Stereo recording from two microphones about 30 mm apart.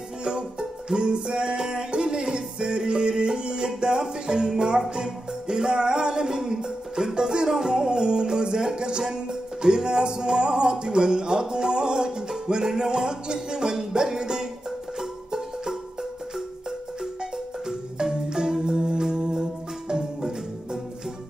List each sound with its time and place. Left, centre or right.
0.2 s music: right
1.6 s music: right
18.0 s music: right